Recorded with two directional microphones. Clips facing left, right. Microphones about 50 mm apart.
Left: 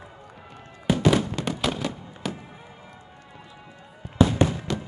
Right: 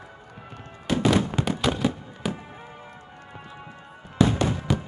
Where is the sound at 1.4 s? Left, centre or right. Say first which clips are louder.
Right 3 dB; right.